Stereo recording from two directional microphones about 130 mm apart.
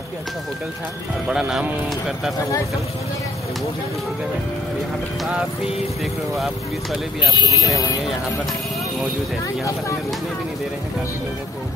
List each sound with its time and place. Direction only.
1.3 s speech: 5° right (ahead or behind)
6.3 s speech: centre (ahead or behind)
7.2 s speech: 25° left (ahead or behind)